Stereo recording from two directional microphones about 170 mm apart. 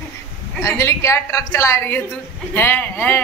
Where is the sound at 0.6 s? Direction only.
15° left (ahead or behind).